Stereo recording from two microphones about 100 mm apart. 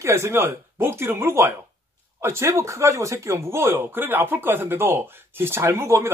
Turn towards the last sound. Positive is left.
turn(degrees=-25)  # may be behind; listen again after turning